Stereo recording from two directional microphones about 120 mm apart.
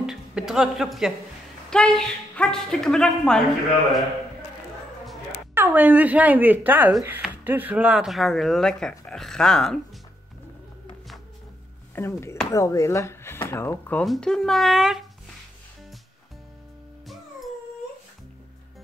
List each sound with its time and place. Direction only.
0.0 s speech: 5° right (ahead or behind)
5.5 s speech: 15° right (ahead or behind); by 9.8 s 5° left (ahead or behind)
11.9 s speech: 20° left (ahead or behind)
14.0 s speech: 5° left (ahead or behind)
17.0 s music: centre (ahead or behind)